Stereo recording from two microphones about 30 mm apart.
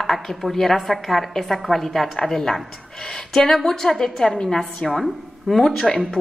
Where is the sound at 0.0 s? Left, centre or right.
Centre.